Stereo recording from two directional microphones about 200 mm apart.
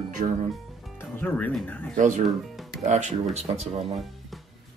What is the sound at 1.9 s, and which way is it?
Speech, 40° right (ahead or behind).